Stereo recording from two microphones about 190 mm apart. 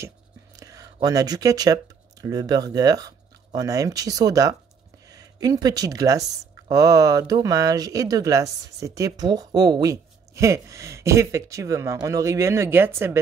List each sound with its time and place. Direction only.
0.6 s whispering: 20° right (ahead or behind)
1.0 s speech: 20° right (ahead or behind)